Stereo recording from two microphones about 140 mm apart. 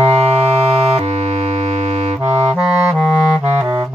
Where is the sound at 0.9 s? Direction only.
50° right (ahead or behind).